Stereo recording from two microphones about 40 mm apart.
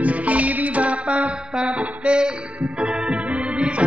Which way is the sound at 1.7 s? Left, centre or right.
Right.